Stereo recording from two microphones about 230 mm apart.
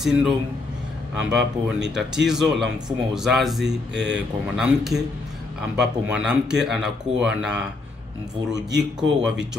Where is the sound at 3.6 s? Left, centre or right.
Right.